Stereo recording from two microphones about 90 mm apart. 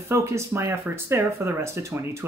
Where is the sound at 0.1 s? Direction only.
35° right (ahead or behind).